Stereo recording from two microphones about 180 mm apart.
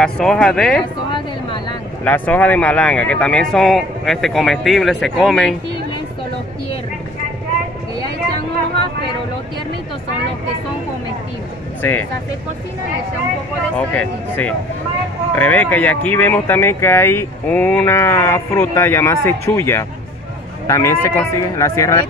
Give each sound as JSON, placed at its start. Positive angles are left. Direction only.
{"t": 0.0, "sound": "speech", "side_deg": 5}
{"t": 2.0, "sound": "speech", "side_deg": 10}
{"t": 11.8, "sound": "speech", "side_deg": 10}
{"t": 13.7, "sound": "speech", "side_deg": 10}